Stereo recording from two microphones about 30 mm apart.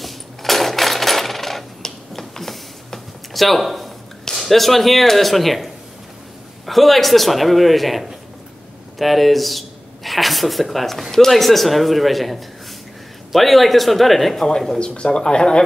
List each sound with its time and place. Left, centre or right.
0.0 s coin: centre
1.8 s a sound: centre
3.3 s speech: centre
14.8 s speech: left